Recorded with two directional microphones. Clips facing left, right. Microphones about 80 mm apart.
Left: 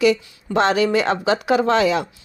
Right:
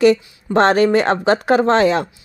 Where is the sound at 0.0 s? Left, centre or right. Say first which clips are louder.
Right 4 dB; right.